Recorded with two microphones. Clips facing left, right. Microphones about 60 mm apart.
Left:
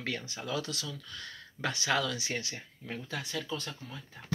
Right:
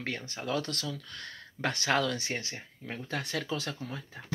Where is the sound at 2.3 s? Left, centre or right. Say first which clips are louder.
Even; right.